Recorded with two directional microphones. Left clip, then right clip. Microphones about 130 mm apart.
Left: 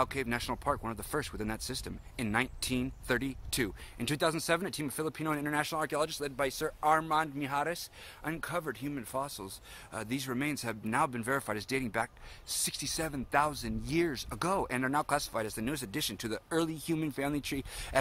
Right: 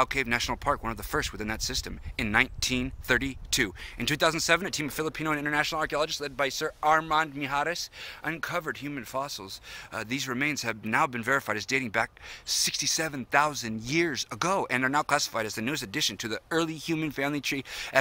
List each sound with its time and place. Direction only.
0.0 s speech: 25° right (ahead or behind)